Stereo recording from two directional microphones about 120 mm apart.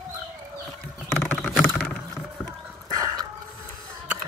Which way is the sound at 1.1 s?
10° left (ahead or behind).